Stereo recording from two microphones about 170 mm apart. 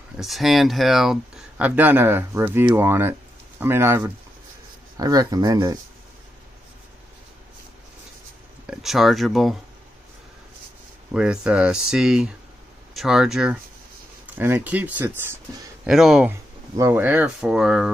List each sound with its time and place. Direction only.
0.2 s speech: centre (ahead or behind); by 5.8 s 20° right (ahead or behind)
8.6 s speech: centre (ahead or behind)
11.1 s speech: 5° right (ahead or behind)
16.7 s speech: 15° right (ahead or behind)